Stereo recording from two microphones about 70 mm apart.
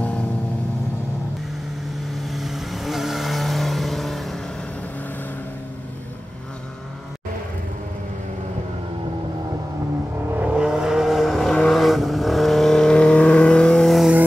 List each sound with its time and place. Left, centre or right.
2.1 s vehicle: centre
10.3 s vehicle: centre
10.7 s vehicle: centre
13.8 s vehicle: centre